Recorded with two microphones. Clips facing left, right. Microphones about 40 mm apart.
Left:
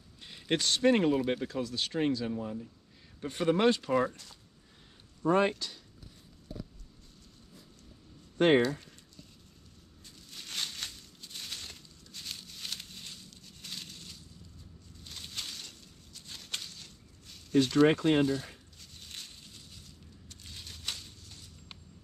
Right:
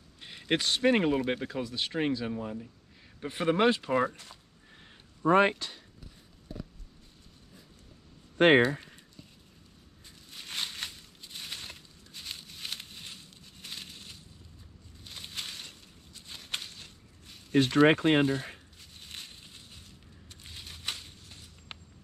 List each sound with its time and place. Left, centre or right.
0.2 s speech: centre
5.2 s speech: right
8.4 s speech: right
8.6 s speech: right
10.0 s a sound: centre; by 18.6 s right
18.8 s a sound: centre
21.7 s walk: right